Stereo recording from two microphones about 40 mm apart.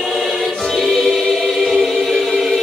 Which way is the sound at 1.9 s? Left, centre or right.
Centre.